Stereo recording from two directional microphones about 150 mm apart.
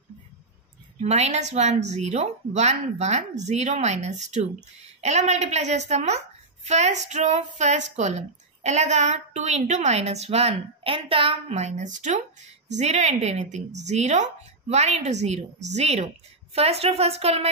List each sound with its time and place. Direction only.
1.0 s speech: 50° right (ahead or behind)